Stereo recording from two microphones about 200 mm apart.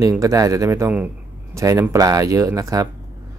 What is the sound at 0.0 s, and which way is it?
Speech, 15° right (ahead or behind).